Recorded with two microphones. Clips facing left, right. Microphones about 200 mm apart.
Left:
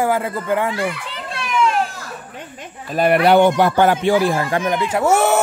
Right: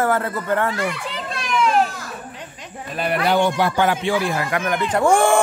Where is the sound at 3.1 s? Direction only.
75° left (ahead or behind).